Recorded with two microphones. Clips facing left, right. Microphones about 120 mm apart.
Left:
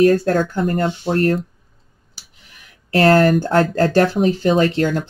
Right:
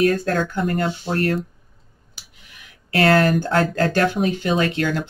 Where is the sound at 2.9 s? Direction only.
40° left (ahead or behind).